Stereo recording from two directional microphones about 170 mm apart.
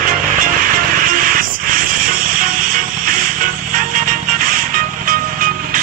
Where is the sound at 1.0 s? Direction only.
55° right (ahead or behind).